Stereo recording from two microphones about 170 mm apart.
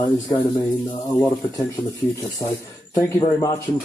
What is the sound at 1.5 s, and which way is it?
Speech, 20° left (ahead or behind).